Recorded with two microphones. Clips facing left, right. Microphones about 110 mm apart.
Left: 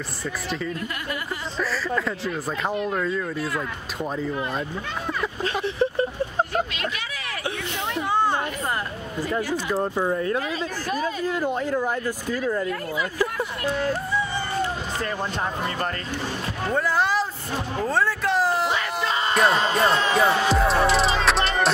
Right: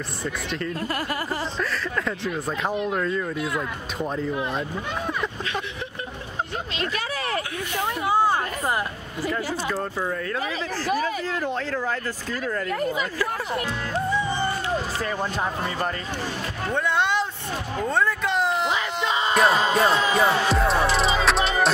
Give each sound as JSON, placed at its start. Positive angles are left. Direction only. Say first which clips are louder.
{"t": 1.6, "sound": "speech", "louder": "left 2 dB", "side_deg": 0}
{"t": 5.4, "sound": "vehicle", "louder": "left 7 dB", "side_deg": 35}
{"t": 7.9, "sound": "chatter", "louder": "right 1 dB", "side_deg": -10}
{"t": 9.7, "sound": "speech", "louder": "left 4 dB", "side_deg": 20}
{"t": 16.7, "sound": "a sound", "louder": "left 1 dB", "side_deg": 0}
{"t": 17.8, "sound": "speech", "louder": "even", "side_deg": 0}
{"t": 18.9, "sound": "music", "louder": "right 2 dB", "side_deg": 0}